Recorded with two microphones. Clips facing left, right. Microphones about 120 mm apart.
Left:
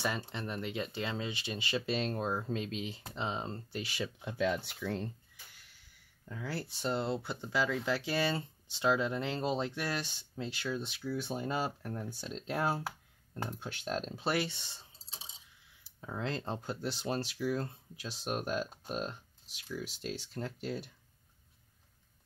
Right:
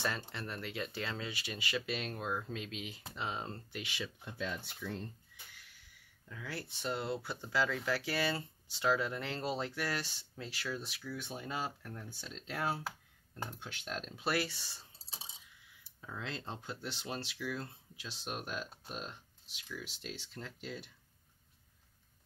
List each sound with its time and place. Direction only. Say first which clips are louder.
0.0 s speech: left 3 dB; 15° left (ahead or behind)
3.7 s speech: left 5 dB; 40° left (ahead or behind)
4.2 s speech: left 12 dB; 90° left
6.2 s speech: left 5 dB; 30° left (ahead or behind)
13.5 s speech: left 6 dB; 40° left (ahead or behind); by 14.8 s 20° left (ahead or behind)
16.1 s speech: left 6 dB; 40° left (ahead or behind)